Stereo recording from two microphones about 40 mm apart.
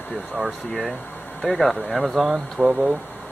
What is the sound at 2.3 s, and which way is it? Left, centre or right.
Speech, right.